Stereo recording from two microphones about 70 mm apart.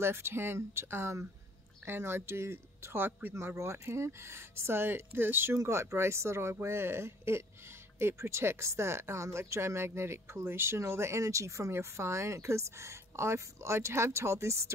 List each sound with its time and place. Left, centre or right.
0.0 s speech: right
3.5 s speech: right
5.6 s speech: right